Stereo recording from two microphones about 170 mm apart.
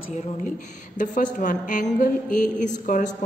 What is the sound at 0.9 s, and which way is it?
A woman's voice, 50° left (ahead or behind).